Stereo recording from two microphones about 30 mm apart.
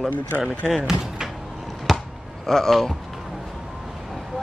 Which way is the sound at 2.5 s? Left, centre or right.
Centre.